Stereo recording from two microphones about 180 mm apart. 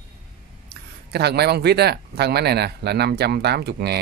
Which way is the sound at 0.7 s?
65° right (ahead or behind).